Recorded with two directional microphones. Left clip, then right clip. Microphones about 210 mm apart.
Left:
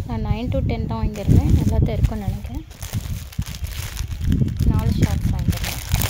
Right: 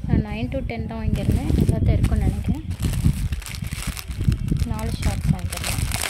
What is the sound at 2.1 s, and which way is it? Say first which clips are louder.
Speech: right 3 dB; centre (ahead or behind).